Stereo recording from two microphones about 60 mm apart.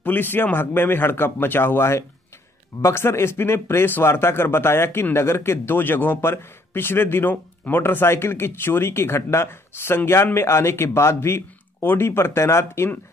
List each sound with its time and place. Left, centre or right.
0.0 s a man's voice: left